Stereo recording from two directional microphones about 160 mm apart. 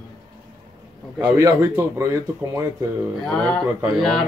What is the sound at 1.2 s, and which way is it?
Speech, 20° right (ahead or behind).